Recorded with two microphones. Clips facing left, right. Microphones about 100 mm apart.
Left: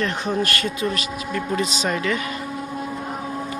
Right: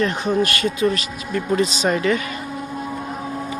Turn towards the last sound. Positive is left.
turn(degrees=-30)  # may be behind; listen again after turning